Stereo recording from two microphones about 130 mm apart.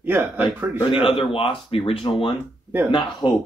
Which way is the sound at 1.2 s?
45° left (ahead or behind).